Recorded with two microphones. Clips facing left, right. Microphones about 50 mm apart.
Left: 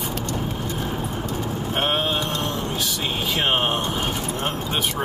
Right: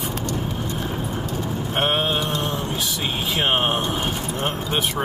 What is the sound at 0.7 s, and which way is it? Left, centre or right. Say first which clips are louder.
Clip-clop: even; centre.